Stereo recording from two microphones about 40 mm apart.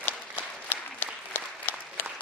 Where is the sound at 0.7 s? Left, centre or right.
Left.